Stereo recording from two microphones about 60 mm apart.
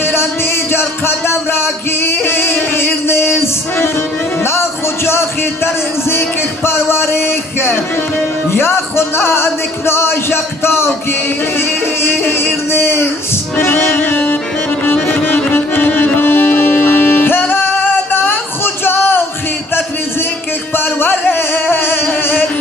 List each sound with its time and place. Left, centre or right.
0.0 s music: left
5.0 s music: left
18.1 s a sound: left
20.7 s music: left